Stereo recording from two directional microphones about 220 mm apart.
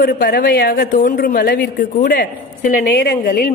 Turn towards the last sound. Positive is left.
turn(degrees=40)  # may be behind; listen again after turning